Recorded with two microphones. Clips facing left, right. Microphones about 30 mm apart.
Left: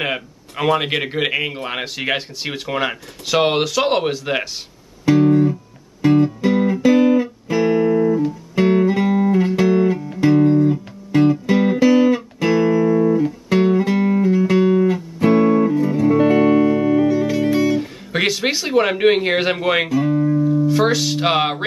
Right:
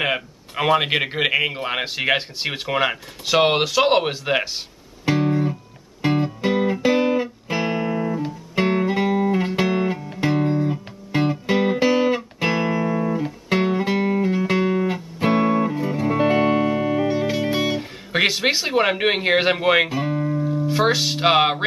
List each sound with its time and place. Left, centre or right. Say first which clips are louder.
0.0 s speech: even; centre
5.0 s music: left 7 dB; centre
17.7 s music: left 1 dB; centre
19.9 s music: left 6 dB; centre
20.6 s speech: left 3 dB; centre